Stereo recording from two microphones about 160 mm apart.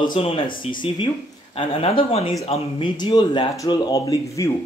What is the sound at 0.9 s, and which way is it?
Speech, 30° left (ahead or behind).